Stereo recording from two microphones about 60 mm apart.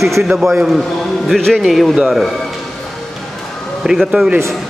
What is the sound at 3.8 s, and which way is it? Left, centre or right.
Speech, centre.